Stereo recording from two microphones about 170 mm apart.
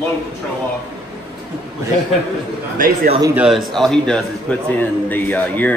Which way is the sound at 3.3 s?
Centre (ahead or behind).